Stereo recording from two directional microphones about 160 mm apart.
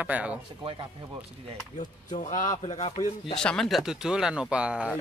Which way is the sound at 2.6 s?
40° left (ahead or behind).